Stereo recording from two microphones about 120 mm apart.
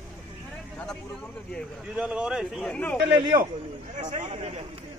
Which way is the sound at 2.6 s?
10° left (ahead or behind).